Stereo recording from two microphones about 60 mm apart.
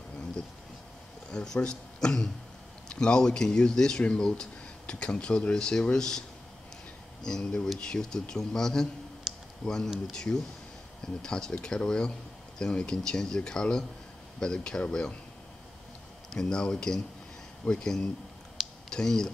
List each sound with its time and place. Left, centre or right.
1.3 s speech: centre
7.2 s speech: centre
9.3 s a sound: centre
9.6 s speech: centre
16.3 s speech: centre